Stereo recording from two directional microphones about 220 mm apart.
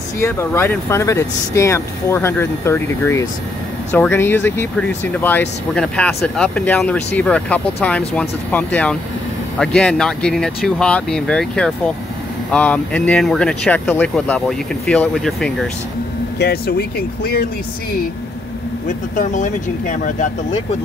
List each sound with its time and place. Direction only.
0.2 s speech: 10° left (ahead or behind)
16.3 s speech: 50° left (ahead or behind)
18.9 s speech: 35° left (ahead or behind)